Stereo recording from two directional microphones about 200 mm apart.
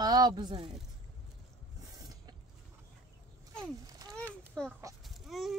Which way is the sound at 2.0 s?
20° right (ahead or behind).